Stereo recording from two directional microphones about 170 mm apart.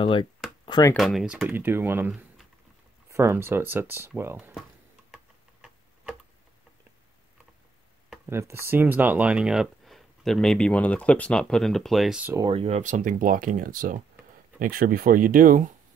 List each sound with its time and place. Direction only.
0.0 s speech: 30° left (ahead or behind)
0.7 s a sound: 25° left (ahead or behind)
0.9 s speech: centre (ahead or behind)
5.1 s tick-tock: 5° right (ahead or behind)
8.3 s speech: 15° right (ahead or behind)
12.4 s speech: 30° right (ahead or behind); by 15.7 s 55° right (ahead or behind)